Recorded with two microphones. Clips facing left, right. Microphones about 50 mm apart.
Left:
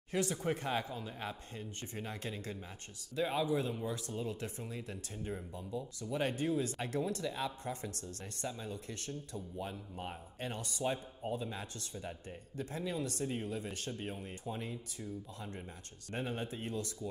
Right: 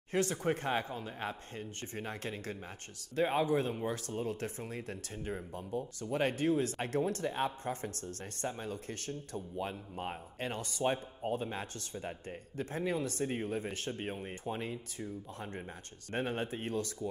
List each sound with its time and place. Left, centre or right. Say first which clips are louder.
0.1 s speech: right 3 dB; right